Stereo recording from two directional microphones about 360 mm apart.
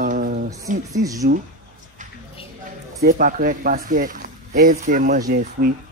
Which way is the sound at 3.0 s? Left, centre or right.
Right.